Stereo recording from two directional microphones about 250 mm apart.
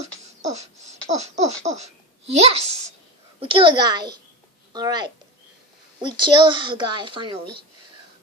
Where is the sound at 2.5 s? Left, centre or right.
Right.